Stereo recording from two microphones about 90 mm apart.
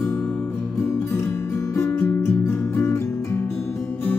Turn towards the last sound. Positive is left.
turn(degrees=25)  # may be behind; listen again after turning